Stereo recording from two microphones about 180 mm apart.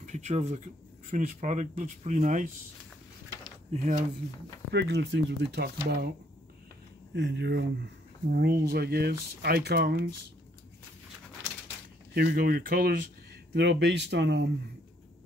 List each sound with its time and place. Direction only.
0.0 s speech: 40° right (ahead or behind)
3.7 s speech: 40° right (ahead or behind)
4.7 s speech: 70° right (ahead or behind)
7.2 s speech: 70° right (ahead or behind)
12.1 s speech: 55° right (ahead or behind)
13.6 s speech: 75° right (ahead or behind)